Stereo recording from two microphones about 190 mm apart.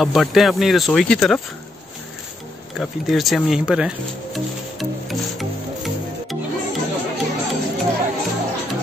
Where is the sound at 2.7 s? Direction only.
Centre (ahead or behind).